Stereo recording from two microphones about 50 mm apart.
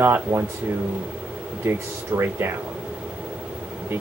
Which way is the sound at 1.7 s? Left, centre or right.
Right.